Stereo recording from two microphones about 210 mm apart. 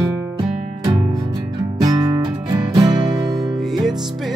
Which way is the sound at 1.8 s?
20° right (ahead or behind).